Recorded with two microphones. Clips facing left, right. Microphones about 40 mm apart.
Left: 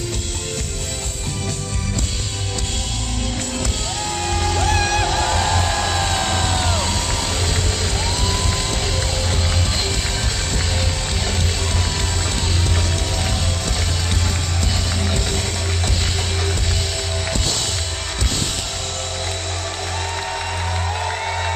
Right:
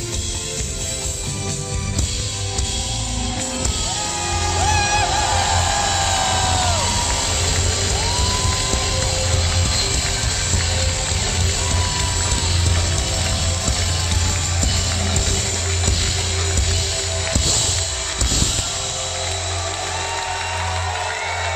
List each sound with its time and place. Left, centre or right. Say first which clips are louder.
4.3 s music: even; centre
5.0 s music: even; centre
20.9 s music: even; centre